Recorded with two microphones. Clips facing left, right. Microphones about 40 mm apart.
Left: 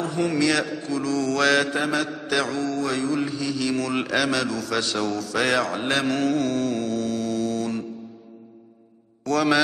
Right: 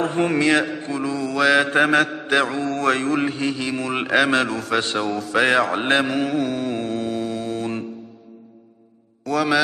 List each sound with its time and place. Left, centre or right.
0.0 s a man's voice: right; by 1.7 s centre
1.7 s mantra: right
2.7 s mantra: right
3.6 s a man's voice: right
6.0 s mantra: centre
6.7 s mantra: right
9.2 s a man's voice: centre